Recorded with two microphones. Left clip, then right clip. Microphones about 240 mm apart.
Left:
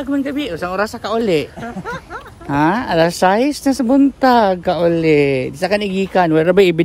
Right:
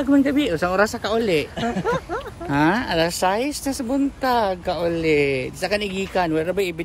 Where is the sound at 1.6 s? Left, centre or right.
Centre.